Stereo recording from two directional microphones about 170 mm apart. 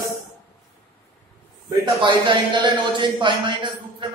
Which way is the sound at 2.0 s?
30° right (ahead or behind).